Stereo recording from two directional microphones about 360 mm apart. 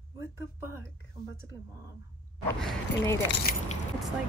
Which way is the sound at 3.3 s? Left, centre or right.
Left.